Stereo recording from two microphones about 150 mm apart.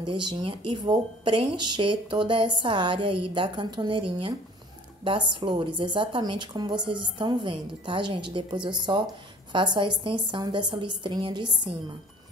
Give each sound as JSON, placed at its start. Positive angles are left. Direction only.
{"t": 0.0, "sound": "speech", "side_deg": -30}